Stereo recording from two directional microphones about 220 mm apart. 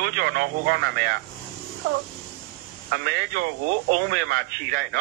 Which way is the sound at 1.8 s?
55° right (ahead or behind).